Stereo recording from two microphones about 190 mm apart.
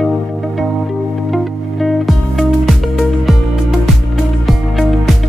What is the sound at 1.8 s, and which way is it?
Music, centre (ahead or behind).